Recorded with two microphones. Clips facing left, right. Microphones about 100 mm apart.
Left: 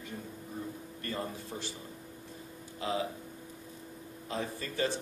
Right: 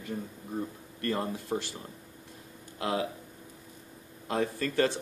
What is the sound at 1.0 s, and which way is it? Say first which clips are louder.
Speech: right 7 dB; 60° right (ahead or behind).